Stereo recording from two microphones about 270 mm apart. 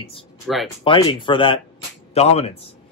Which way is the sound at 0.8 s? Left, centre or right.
Centre.